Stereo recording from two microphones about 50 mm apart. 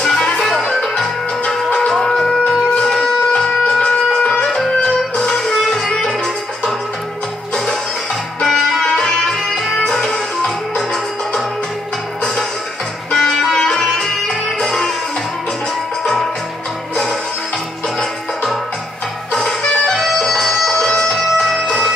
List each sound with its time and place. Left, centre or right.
0.0 s music: centre
0.8 s music: centre
1.9 s a sound: centre
2.8 s shofar: centre
4.8 s music: centre
8.4 s music: centre
13.1 s music: centre
16.0 s music: centre